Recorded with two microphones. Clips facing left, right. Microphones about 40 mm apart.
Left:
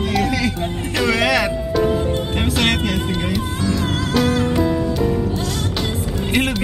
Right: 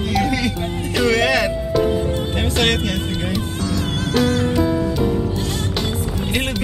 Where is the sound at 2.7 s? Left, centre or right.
Left.